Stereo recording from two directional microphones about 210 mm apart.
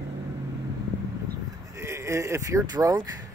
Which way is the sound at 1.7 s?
15° right (ahead or behind).